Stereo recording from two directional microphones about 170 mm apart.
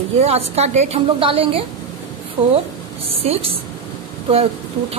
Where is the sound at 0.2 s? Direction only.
40° right (ahead or behind).